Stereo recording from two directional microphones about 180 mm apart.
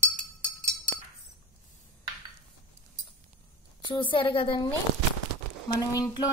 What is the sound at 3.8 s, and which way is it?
Speech, 25° left (ahead or behind).